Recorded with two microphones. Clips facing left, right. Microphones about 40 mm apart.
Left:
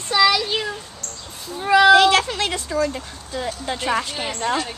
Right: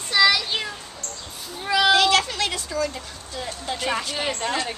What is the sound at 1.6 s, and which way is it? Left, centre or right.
A woman's voice, left.